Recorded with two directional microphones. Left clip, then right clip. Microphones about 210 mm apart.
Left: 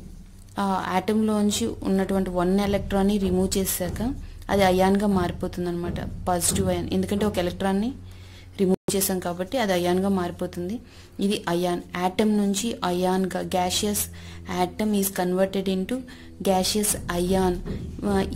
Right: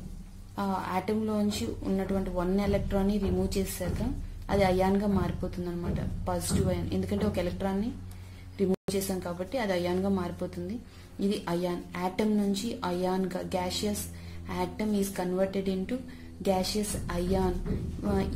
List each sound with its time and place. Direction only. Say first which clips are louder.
0.6 s a woman's voice: left 6 dB; 45° left (ahead or behind)